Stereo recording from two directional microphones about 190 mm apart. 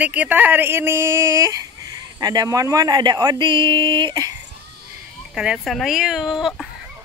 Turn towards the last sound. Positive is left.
turn(degrees=0)  # may be behind; listen again after turning